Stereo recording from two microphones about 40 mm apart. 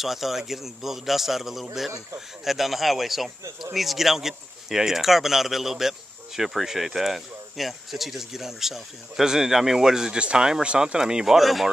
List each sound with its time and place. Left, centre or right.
0.0 s a man's voice: centre
10.1 s a man's voice: right
10.8 s speech: centre
11.3 s a man's voice: centre